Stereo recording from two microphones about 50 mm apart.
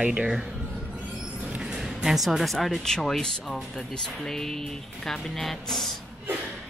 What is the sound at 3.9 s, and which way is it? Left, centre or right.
Speech, centre.